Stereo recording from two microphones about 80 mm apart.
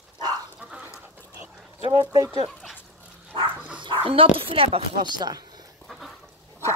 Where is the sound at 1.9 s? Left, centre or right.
Right.